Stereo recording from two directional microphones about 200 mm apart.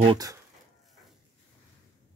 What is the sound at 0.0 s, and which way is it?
Speech, 20° right (ahead or behind).